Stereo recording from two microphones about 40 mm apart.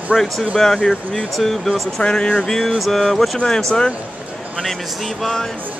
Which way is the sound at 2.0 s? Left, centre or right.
Left.